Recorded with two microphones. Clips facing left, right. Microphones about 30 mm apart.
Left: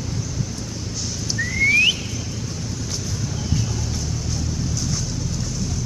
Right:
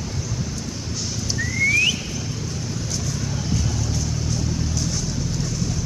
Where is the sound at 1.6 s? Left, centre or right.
Left.